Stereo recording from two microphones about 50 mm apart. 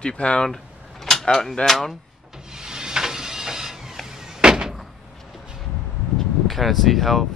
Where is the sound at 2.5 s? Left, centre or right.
Centre.